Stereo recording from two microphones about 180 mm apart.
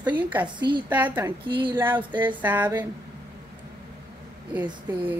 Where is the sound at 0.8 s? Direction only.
10° right (ahead or behind).